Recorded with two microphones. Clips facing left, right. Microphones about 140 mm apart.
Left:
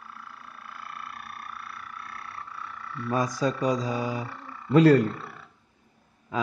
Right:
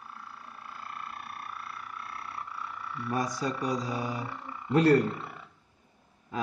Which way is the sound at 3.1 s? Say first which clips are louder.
Left 5 dB; 90° left.